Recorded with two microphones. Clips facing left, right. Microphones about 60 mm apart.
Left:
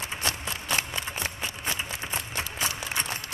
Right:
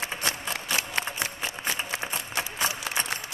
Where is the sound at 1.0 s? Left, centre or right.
Right.